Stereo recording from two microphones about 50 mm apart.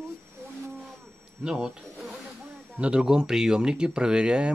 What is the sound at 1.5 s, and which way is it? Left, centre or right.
Speech, centre.